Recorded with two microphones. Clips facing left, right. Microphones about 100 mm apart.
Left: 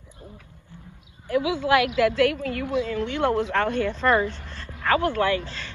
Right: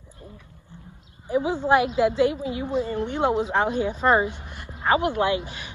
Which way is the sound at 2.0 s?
70° left (ahead or behind).